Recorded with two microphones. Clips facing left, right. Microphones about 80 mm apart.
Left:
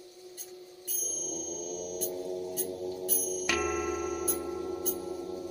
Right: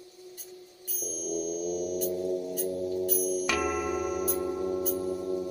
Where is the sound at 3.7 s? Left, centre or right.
Centre.